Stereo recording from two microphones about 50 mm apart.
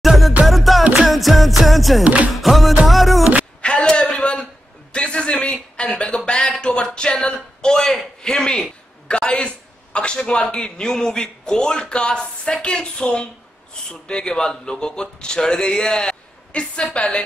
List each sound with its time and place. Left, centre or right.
0.0 s music: centre
3.6 s a sound: left
7.6 s a man's voice: centre